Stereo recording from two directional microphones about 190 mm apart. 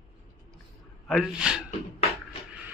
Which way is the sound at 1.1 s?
5° right (ahead or behind).